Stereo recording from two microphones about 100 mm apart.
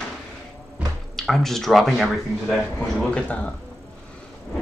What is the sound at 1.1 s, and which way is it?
Speech, 5° left (ahead or behind).